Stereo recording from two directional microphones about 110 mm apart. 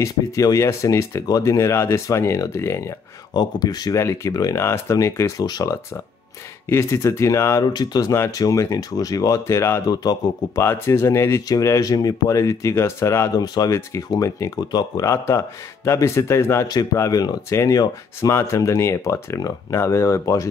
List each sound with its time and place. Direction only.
0.0 s speech: 30° left (ahead or behind)
3.3 s speech: 40° left (ahead or behind)
6.7 s speech: 25° left (ahead or behind)
7.6 s speech: 40° left (ahead or behind)
8.1 s speech: 30° left (ahead or behind)